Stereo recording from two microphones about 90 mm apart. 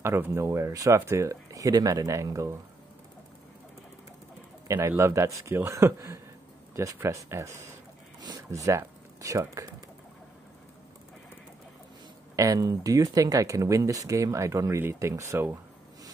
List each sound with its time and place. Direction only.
0.0 s speech: 30° right (ahead or behind)
4.6 s speech: 30° right (ahead or behind)
12.4 s speech: 35° right (ahead or behind)